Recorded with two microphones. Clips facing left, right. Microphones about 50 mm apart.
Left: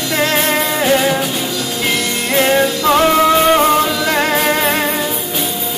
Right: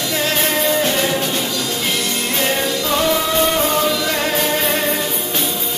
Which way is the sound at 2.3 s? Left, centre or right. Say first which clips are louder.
Left 8 dB; left.